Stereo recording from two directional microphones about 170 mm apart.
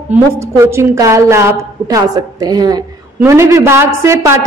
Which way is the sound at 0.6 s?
15° right (ahead or behind).